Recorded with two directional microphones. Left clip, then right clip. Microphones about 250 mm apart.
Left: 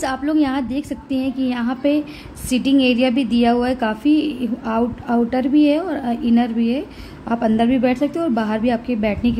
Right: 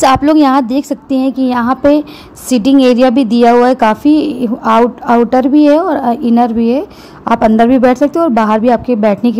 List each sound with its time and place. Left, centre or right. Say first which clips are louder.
0.0 s a woman's voice: right 12 dB; right